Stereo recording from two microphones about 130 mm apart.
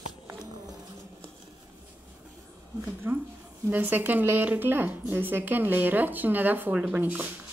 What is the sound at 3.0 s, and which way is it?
A woman's voice, 20° right (ahead or behind).